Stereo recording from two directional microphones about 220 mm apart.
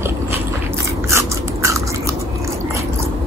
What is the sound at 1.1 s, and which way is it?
Biting, 15° right (ahead or behind).